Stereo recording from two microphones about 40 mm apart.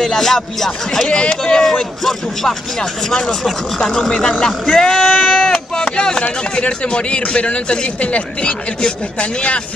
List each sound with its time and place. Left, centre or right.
0.1 s a man's voice: centre; by 9.6 s left